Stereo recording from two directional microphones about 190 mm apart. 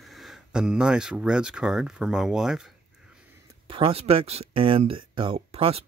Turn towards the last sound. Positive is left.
turn(degrees=-30)  # may be behind; listen again after turning